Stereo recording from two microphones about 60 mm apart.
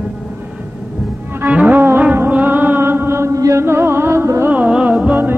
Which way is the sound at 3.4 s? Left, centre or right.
Right.